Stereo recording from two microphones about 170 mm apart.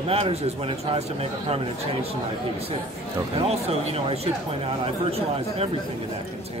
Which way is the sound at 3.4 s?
35° right (ahead or behind).